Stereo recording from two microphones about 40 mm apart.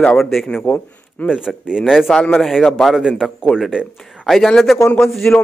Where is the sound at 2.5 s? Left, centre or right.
Centre.